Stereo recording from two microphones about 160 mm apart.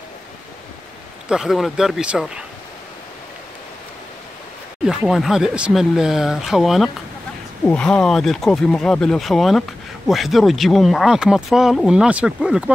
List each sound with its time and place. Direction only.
1.3 s speech: centre (ahead or behind)
4.8 s speech: centre (ahead or behind)